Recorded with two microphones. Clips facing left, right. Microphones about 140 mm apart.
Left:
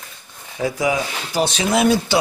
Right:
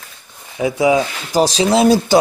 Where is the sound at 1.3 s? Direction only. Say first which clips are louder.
Right 5 dB; 35° right (ahead or behind).